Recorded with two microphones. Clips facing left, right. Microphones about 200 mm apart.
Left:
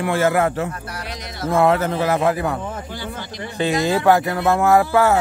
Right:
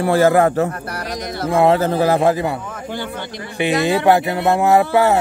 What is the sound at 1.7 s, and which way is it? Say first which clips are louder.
Speech: right 4 dB; 35° right (ahead or behind).